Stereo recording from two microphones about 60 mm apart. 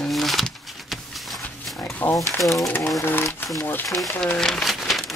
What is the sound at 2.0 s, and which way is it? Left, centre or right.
Speech, left.